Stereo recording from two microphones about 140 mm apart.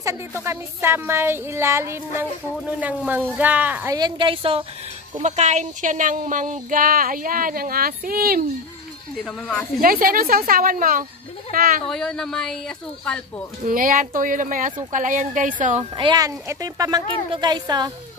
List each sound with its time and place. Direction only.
0.0 s speech: 20° right (ahead or behind)
2.5 s speech: 10° right (ahead or behind)
3.9 s a woman's voice: 35° right (ahead or behind)
5.2 s speech: 55° right (ahead or behind); by 8.5 s 90° right
9.1 s speech: centre (ahead or behind)
9.8 s speech: 90° right
11.5 s speech: 90° right
11.9 s speech: 5° left (ahead or behind)
13.7 s a woman's voice: 85° right
16.0 s speech: 30° right (ahead or behind)